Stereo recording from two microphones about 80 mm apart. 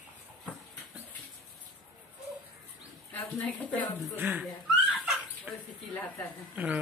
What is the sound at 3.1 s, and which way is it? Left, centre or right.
Speech, left.